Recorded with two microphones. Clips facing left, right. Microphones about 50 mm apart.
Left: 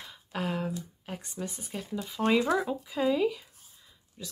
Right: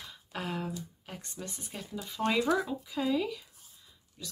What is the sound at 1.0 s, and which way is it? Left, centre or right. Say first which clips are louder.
Speech: left 5 dB; centre.